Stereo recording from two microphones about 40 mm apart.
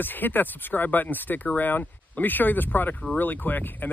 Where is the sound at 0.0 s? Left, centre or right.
Left.